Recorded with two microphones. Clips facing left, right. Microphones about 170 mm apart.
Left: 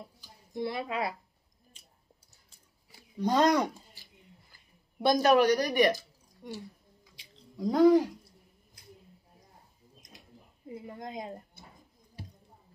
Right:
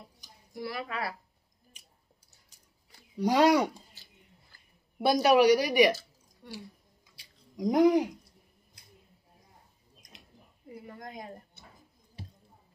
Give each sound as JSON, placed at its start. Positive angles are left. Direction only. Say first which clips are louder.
{"t": 0.5, "sound": "a woman's voice", "louder": "left 3 dB", "side_deg": 25}
{"t": 3.2, "sound": "speech", "louder": "right 2 dB", "side_deg": -10}
{"t": 3.9, "sound": "a sound", "louder": "left 3 dB", "side_deg": 15}
{"t": 5.0, "sound": "speech", "louder": "right 1 dB", "side_deg": -10}
{"t": 6.4, "sound": "speech", "louder": "left 3 dB", "side_deg": 15}
{"t": 7.5, "sound": "speech", "louder": "left 1 dB", "side_deg": -15}
{"t": 10.7, "sound": "a woman's voice", "louder": "left 3 dB", "side_deg": 20}